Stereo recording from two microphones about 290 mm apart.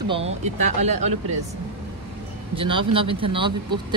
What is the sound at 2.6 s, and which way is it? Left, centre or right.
Speech, centre.